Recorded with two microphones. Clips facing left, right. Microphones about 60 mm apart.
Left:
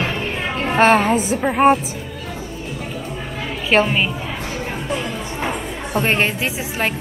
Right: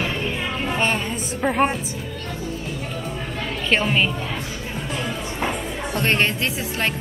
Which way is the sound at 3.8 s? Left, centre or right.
Centre.